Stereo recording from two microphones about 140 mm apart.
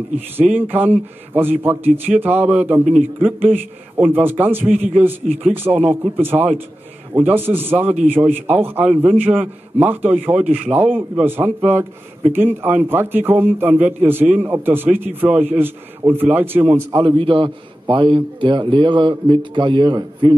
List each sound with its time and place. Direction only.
0.6 s a man's voice: 15° right (ahead or behind)
4.6 s a man's voice: 55° right (ahead or behind)
4.9 s a man's voice: 10° right (ahead or behind)
17.0 s a man's voice: 40° right (ahead or behind)